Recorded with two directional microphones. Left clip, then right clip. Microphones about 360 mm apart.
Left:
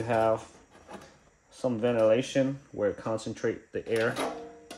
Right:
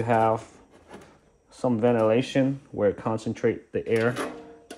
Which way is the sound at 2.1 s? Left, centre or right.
Centre.